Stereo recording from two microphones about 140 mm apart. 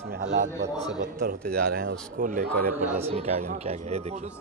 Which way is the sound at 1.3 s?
90° right.